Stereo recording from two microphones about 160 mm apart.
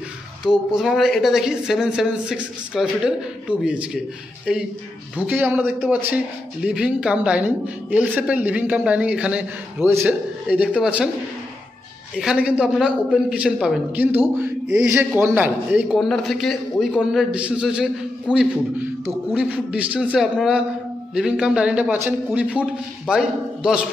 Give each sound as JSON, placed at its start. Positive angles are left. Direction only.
{"t": 0.7, "sound": "a man's voice", "side_deg": 0}
{"t": 12.2, "sound": "a man's voice", "side_deg": -5}